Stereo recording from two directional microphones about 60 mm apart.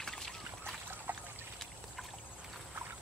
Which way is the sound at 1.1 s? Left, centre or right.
Right.